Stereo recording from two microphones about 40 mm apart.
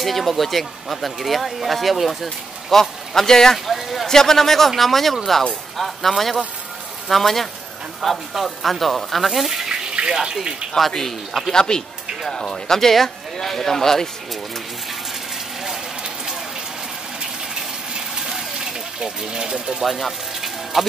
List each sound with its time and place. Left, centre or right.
0.0 s speech: centre
3.5 s speech: centre
4.1 s speech: centre
9.8 s water: right
10.9 s speech: centre
11.5 s speech: centre
18.1 s vehicle: centre
19.8 s a sound: centre